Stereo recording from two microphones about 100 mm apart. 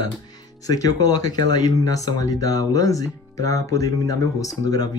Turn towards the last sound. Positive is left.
turn(degrees=40)  # may be behind; listen again after turning